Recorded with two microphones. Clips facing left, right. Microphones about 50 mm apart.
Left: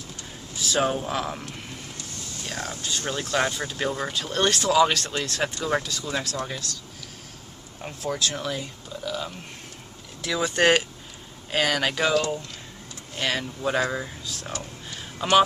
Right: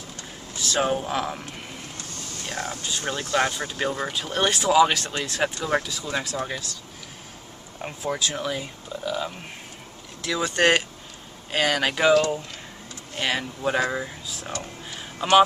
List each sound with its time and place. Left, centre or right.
0.6 s speech: centre
2.4 s speech: centre
7.8 s speech: centre
10.2 s speech: centre
13.2 s speech: centre
14.9 s a sound: centre